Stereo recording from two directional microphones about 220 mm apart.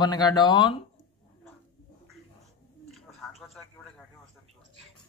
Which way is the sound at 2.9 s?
Centre (ahead or behind).